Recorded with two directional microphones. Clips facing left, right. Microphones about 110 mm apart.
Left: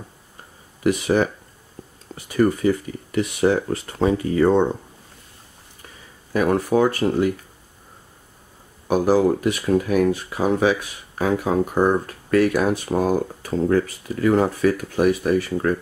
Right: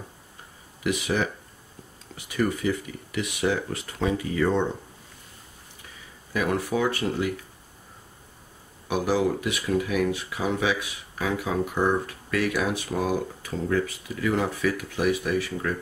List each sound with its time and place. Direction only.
0.8 s speech: 40° left (ahead or behind)
6.3 s speech: 40° left (ahead or behind)
8.8 s speech: 40° left (ahead or behind)